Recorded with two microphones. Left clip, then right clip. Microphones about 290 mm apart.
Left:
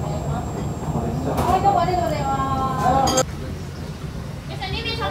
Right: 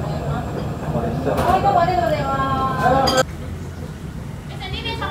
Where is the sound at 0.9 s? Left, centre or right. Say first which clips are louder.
Right 4 dB; left.